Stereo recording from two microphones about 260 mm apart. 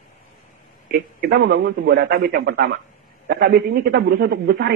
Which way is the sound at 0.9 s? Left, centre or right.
Right.